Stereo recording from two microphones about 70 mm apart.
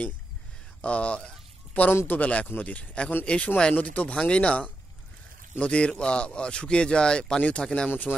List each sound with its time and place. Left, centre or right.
0.8 s a man's voice: centre